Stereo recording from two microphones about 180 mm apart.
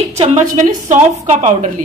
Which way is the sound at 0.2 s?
40° right (ahead or behind).